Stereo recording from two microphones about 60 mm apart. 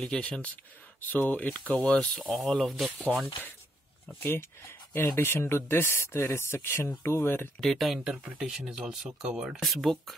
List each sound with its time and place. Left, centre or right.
0.0 s speech: centre
4.1 s speech: left
7.6 s speech: centre
9.6 s speech: centre